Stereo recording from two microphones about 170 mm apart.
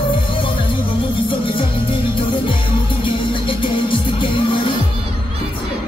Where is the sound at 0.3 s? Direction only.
30° left (ahead or behind).